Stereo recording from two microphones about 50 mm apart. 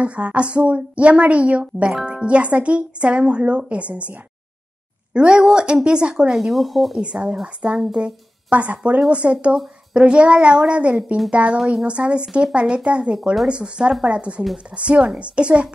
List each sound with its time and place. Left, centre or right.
0.0 s speech: right
5.1 s a woman's voice: centre
7.0 s a woman's voice: centre